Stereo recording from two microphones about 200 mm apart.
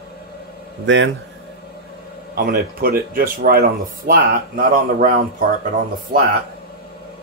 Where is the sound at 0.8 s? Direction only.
65° right (ahead or behind).